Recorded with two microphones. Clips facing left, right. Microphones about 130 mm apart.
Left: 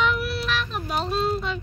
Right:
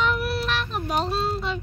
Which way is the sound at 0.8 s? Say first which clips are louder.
Right 1 dB; 25° right (ahead or behind).